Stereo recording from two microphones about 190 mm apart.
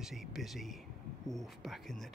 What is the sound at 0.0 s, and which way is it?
Speech, centre (ahead or behind).